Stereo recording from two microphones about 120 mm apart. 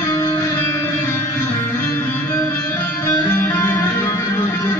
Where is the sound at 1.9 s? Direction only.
20° left (ahead or behind).